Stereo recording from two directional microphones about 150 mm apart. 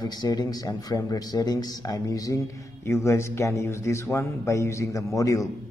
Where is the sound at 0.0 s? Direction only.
25° left (ahead or behind).